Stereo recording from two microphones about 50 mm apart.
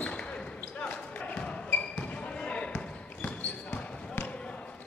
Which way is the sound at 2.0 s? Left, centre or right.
Left.